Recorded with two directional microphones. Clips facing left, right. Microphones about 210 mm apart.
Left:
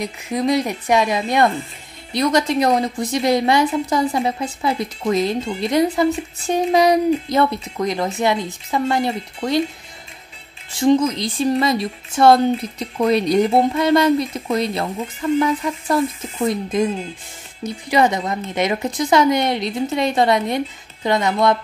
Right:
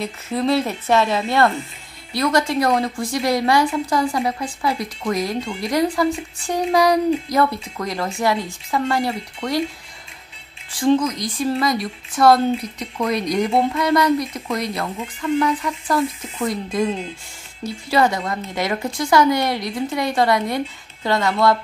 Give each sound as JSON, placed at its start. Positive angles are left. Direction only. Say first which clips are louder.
{"t": 0.0, "sound": "a woman's voice", "louder": "left 1 dB", "side_deg": 15}
{"t": 10.7, "sound": "speech", "louder": "left 2 dB", "side_deg": 25}